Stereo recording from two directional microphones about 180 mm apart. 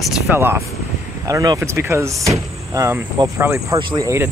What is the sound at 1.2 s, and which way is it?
Speech, 20° right (ahead or behind).